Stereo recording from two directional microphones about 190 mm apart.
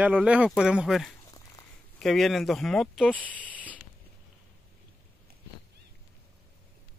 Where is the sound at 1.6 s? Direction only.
15° left (ahead or behind).